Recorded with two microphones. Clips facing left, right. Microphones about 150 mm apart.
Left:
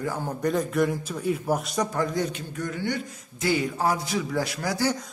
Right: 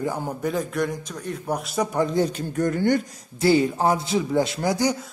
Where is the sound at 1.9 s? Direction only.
20° right (ahead or behind).